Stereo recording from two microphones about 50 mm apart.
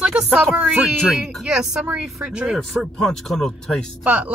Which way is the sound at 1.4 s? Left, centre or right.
Centre.